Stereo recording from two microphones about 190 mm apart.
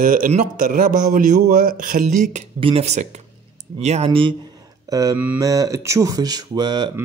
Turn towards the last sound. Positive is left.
turn(degrees=-25)  # may be behind; listen again after turning